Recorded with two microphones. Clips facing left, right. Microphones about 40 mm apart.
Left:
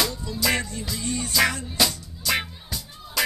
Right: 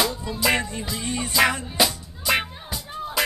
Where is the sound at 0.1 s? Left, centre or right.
Right.